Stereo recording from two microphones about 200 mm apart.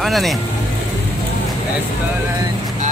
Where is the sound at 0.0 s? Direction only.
Centre (ahead or behind).